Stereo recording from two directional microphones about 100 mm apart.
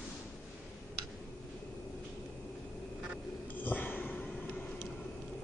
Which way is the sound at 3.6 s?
20° left (ahead or behind).